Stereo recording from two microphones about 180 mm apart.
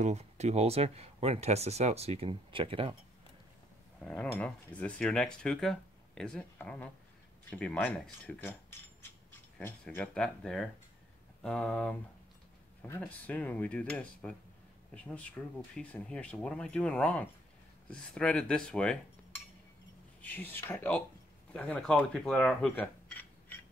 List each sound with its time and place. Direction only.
0.0 s speech: 40° right (ahead or behind)
4.0 s speech: 5° left (ahead or behind)
9.6 s speech: 10° left (ahead or behind)
20.2 s speech: 10° left (ahead or behind)